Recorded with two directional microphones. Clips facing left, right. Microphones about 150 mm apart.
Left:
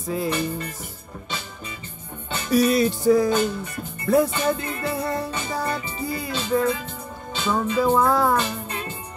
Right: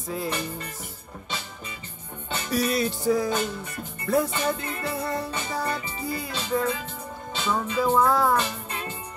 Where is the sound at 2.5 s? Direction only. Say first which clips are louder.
Left 7 dB; 5° left (ahead or behind).